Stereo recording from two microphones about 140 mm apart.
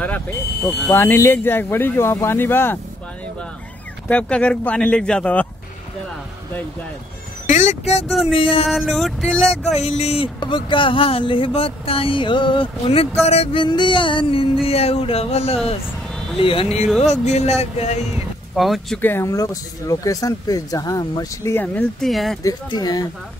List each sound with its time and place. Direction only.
0.0 s speech: 10° left (ahead or behind)
4.1 s speech: 10° left (ahead or behind)
7.4 s speech: 60° left (ahead or behind); by 8.6 s 40° left (ahead or behind)
8.6 s a sound: centre (ahead or behind)
9.7 s speech: 50° left (ahead or behind)
17.0 s speech: 55° left (ahead or behind)
18.6 s a sound: centre (ahead or behind)
18.9 s speech: 15° left (ahead or behind)
22.0 s a sound: centre (ahead or behind)
22.4 s speech: 30° left (ahead or behind)